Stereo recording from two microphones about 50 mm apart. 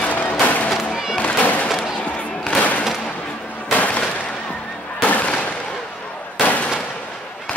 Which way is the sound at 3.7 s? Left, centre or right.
Left.